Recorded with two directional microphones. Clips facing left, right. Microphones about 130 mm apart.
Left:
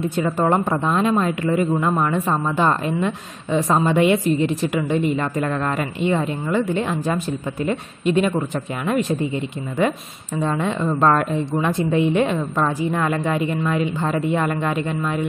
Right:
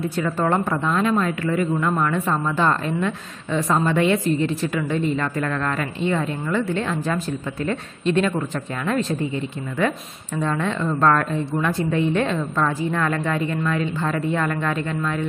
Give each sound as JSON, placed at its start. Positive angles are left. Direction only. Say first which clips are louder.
{"t": 0.0, "sound": "a woman's voice", "louder": "left 2 dB", "side_deg": 20}
{"t": 9.8, "sound": "speech", "louder": "left 2 dB", "side_deg": 15}